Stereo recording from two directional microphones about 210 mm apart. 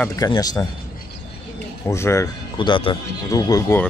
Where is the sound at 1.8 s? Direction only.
15° left (ahead or behind).